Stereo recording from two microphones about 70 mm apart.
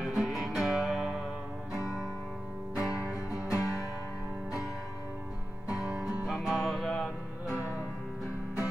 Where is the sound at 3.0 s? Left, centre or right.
Left.